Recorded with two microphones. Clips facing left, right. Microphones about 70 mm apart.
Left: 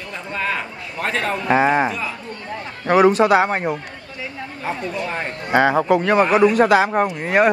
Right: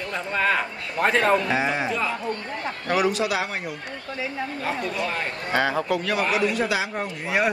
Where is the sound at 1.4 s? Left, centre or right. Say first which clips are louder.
Left 8 dB; left.